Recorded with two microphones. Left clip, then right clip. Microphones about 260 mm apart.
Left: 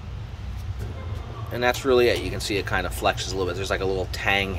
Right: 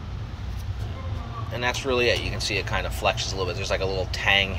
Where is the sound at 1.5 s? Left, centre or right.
Left.